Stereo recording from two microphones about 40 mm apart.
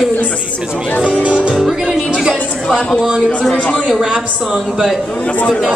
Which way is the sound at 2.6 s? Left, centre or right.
Centre.